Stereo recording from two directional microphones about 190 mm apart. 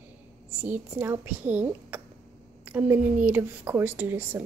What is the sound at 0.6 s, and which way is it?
A woman's voice, 10° right (ahead or behind).